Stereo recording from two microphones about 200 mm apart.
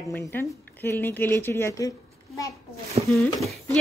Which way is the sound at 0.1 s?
10° left (ahead or behind).